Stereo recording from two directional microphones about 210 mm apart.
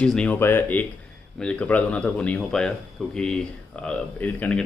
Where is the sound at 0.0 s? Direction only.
5° left (ahead or behind).